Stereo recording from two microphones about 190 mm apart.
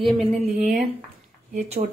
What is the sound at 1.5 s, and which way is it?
Speech, 35° right (ahead or behind).